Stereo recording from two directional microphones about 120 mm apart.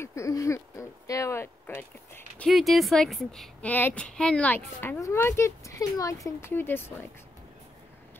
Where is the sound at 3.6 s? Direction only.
15° left (ahead or behind).